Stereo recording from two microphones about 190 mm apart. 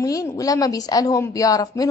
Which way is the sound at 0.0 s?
20° left (ahead or behind).